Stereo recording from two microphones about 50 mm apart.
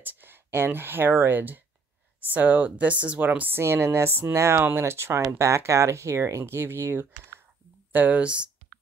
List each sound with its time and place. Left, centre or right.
0.0 s a woman's voice: right
3.5 s speech: right
7.9 s speech: right
8.2 s speech: right